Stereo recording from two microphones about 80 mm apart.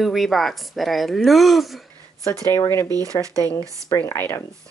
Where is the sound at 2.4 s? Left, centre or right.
Left.